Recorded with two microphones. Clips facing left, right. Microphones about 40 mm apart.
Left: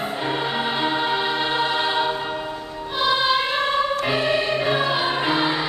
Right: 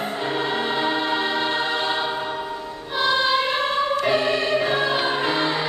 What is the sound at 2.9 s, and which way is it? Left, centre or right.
Music, centre.